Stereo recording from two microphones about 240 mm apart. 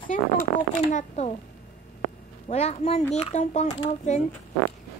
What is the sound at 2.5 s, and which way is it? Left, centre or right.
Speech, left.